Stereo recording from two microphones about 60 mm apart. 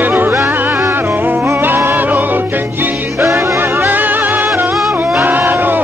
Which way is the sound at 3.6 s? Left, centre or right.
Right.